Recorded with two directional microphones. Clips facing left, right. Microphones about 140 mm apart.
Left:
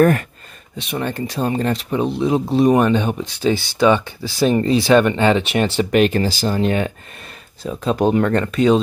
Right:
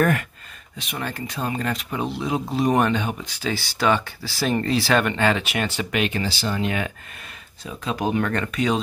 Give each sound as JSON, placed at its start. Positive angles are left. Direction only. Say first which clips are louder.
{"t": 0.0, "sound": "speech", "louder": "left 6 dB", "side_deg": 35}
{"t": 0.7, "sound": "speech", "louder": "left 7 dB", "side_deg": 25}
{"t": 8.0, "sound": "speech", "louder": "left 7 dB", "side_deg": 35}